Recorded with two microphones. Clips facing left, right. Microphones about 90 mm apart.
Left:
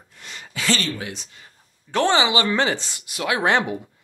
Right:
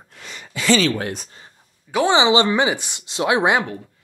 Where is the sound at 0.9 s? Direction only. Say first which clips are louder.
Right 6 dB; 50° right (ahead or behind).